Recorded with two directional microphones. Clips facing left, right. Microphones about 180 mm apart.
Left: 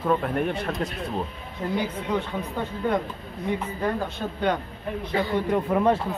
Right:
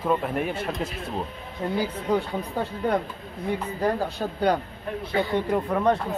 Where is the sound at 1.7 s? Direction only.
35° right (ahead or behind).